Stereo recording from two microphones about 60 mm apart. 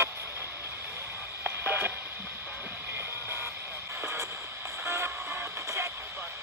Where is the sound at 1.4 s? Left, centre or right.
Right.